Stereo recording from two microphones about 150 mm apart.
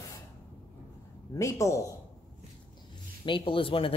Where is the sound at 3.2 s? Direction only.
35° left (ahead or behind).